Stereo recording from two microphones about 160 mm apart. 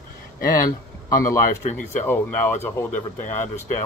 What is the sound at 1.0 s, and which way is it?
Speech, 20° left (ahead or behind).